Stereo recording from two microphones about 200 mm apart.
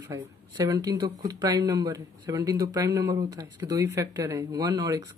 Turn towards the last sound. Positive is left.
turn(degrees=-15)  # may be behind; listen again after turning